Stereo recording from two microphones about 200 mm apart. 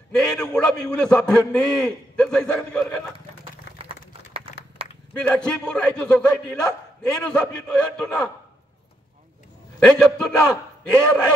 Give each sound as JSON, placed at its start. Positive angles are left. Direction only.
{"t": 0.2, "sound": "a man's voice", "side_deg": 5}
{"t": 3.7, "sound": "a sound", "side_deg": -30}
{"t": 5.1, "sound": "a man's voice", "side_deg": 5}
{"t": 9.8, "sound": "a man's voice", "side_deg": 5}